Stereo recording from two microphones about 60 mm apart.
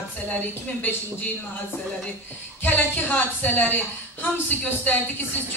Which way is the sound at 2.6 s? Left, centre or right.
Left.